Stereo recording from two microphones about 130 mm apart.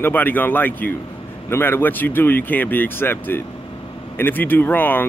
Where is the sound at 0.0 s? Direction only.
15° left (ahead or behind).